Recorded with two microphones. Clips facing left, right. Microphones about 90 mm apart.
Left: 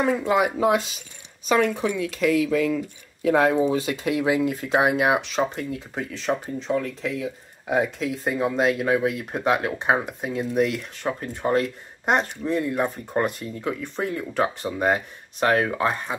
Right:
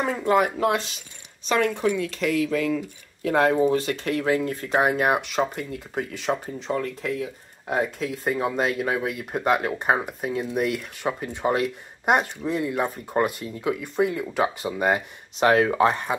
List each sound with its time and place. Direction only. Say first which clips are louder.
0.0 s speech: even; centre (ahead or behind)
15.3 s speech: right 2 dB; 20° right (ahead or behind)